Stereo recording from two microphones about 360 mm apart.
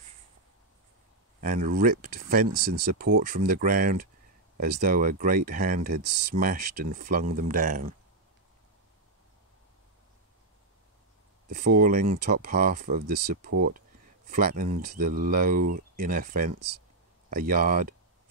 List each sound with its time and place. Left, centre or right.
1.4 s speech: right
11.5 s speech: right